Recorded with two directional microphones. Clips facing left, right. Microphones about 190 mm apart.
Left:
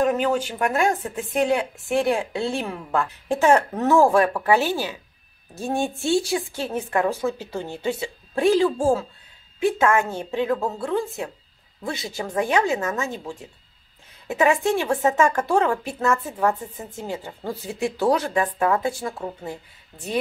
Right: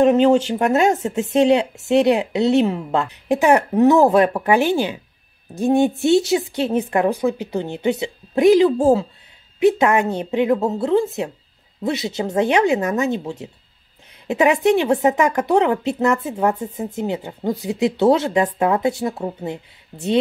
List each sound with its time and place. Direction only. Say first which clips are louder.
0.0 s a woman's voice: right 8 dB; 25° right (ahead or behind)